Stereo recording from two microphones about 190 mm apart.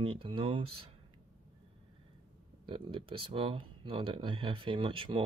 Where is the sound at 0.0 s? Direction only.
25° right (ahead or behind).